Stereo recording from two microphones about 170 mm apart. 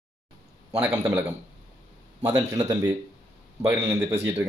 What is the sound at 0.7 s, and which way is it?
Speech, 5° right (ahead or behind).